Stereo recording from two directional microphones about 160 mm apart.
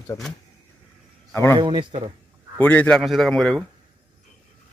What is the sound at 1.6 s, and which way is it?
Speech, 30° right (ahead or behind).